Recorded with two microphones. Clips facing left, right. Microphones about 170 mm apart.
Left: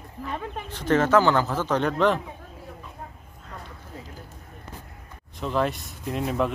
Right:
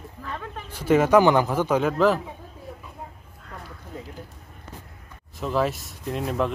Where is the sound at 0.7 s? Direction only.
10° right (ahead or behind).